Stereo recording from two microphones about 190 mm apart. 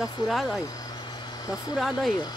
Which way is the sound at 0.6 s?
20° left (ahead or behind).